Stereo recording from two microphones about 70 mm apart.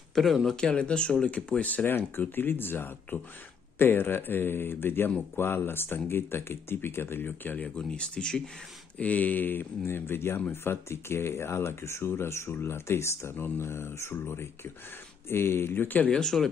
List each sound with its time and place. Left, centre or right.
0.1 s speech: centre
0.6 s speech: centre
16.1 s speech: centre